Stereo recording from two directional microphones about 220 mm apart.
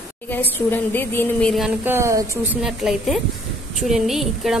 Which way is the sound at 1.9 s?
15° right (ahead or behind).